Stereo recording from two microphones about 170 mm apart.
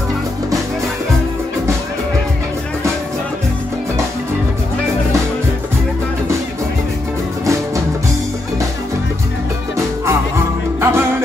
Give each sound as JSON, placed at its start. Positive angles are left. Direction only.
{"t": 10.8, "sound": "music", "side_deg": -15}